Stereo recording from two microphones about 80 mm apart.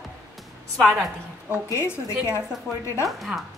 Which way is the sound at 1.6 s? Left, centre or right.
Left.